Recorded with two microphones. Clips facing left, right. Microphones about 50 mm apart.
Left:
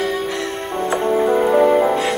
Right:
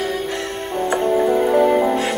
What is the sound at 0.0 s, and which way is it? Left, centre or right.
Music, centre.